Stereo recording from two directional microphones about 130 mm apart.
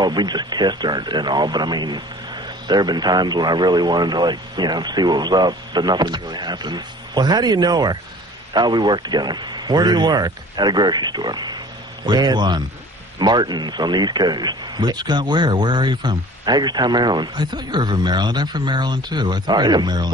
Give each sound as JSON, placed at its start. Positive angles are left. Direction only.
{"t": 0.0, "sound": "speech", "side_deg": -35}